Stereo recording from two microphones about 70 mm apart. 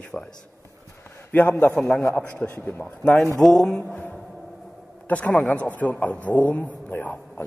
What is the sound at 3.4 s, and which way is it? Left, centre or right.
Speech, centre.